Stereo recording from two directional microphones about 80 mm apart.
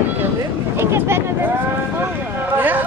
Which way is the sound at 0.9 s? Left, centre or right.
Right.